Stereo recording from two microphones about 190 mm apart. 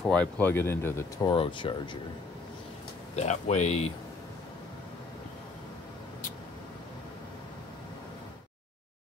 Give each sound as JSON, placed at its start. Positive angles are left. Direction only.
{"t": 0.0, "sound": "speech", "side_deg": 5}
{"t": 3.2, "sound": "speech", "side_deg": 35}